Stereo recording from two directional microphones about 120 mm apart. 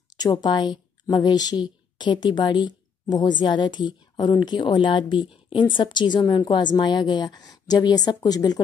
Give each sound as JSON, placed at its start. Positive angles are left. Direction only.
{"t": 0.2, "sound": "a woman's voice", "side_deg": 35}